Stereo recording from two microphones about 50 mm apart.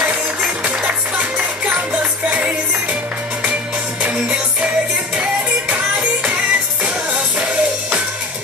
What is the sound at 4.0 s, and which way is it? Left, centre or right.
Music, right.